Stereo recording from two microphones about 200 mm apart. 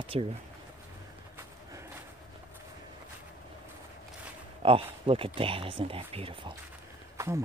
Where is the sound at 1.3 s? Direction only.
15° right (ahead or behind).